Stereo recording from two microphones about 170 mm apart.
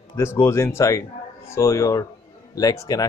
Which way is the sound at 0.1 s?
15° left (ahead or behind).